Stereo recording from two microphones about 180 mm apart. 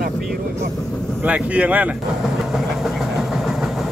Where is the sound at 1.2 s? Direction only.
5° right (ahead or behind).